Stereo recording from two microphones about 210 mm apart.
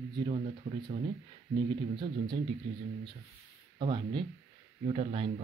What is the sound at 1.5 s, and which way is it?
Speech, 20° right (ahead or behind).